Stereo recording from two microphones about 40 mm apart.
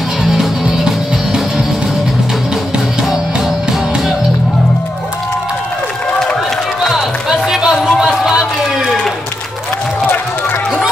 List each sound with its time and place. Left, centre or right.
0.2 s music: centre
7.2 s music: centre
8.0 s a sound: centre